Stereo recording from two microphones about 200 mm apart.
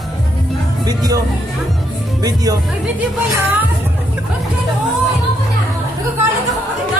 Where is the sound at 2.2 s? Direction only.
20° right (ahead or behind).